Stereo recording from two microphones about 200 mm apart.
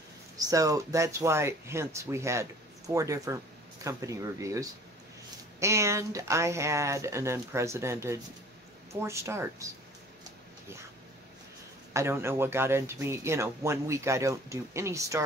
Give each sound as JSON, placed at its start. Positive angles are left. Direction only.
{"t": 0.4, "sound": "speech", "side_deg": -15}
{"t": 11.9, "sound": "speech", "side_deg": -15}